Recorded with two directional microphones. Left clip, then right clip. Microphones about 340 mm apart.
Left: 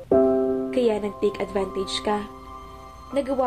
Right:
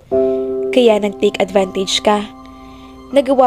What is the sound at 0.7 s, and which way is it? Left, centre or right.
A woman's voice, right.